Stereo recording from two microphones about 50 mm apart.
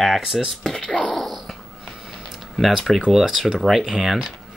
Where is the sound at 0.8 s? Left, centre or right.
Left.